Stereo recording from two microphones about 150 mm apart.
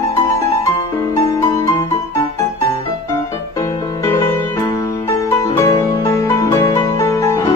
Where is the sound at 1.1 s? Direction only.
20° left (ahead or behind).